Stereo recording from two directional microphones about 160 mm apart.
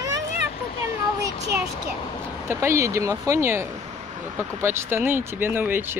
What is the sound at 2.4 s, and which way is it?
A woman's voice, 15° right (ahead or behind).